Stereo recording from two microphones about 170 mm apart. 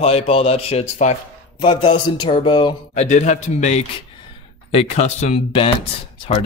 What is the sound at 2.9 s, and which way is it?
A man's voice, 45° left (ahead or behind).